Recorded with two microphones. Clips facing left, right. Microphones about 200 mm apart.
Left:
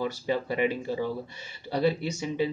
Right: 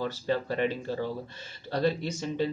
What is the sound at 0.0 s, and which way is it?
Speech, 10° left (ahead or behind).